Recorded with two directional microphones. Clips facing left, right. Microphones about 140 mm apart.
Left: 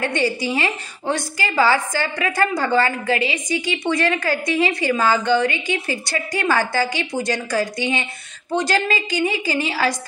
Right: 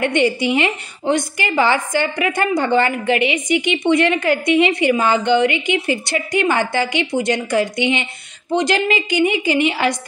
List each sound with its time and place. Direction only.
0.0 s a woman's voice: 20° right (ahead or behind)